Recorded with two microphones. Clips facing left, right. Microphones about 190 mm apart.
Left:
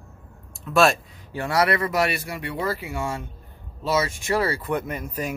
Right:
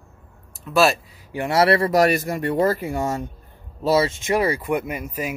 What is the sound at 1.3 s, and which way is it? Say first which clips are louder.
Speech: right 4 dB; 25° right (ahead or behind).